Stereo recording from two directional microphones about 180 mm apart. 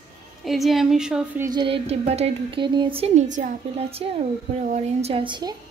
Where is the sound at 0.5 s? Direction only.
Centre (ahead or behind).